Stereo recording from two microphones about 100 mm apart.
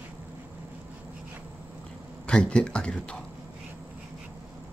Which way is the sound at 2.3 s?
10° left (ahead or behind).